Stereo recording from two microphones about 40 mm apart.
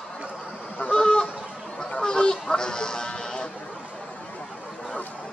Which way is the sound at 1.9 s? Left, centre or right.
Centre.